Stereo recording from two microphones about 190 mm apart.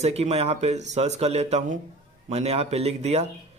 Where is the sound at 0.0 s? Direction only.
35° right (ahead or behind).